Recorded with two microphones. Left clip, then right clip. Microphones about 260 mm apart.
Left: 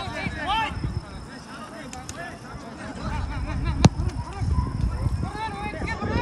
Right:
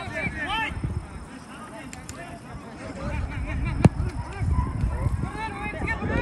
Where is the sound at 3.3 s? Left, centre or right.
Left.